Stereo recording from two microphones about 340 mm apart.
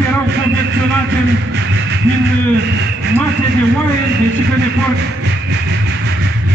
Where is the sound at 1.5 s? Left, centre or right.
Right.